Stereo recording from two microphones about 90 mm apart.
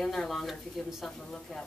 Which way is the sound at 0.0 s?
5° left (ahead or behind).